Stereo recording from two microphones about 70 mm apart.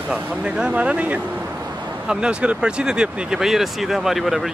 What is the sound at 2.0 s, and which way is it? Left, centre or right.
Speech, centre.